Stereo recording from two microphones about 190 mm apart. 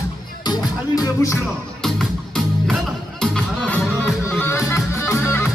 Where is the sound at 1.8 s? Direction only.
Centre (ahead or behind).